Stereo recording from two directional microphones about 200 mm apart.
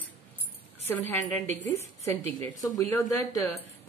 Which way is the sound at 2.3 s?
20° left (ahead or behind).